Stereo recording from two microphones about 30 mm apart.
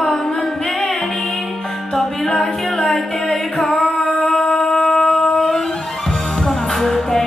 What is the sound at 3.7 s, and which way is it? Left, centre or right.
Singing, centre.